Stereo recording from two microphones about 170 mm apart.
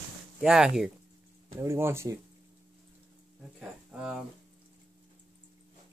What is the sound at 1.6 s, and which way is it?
Speech, 15° right (ahead or behind).